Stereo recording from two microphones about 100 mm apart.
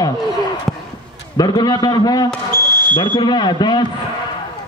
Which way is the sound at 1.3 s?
45° left (ahead or behind).